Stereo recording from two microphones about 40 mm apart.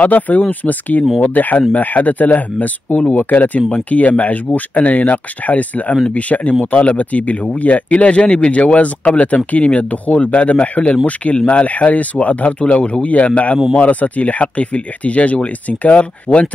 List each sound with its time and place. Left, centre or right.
0.0 s speech: left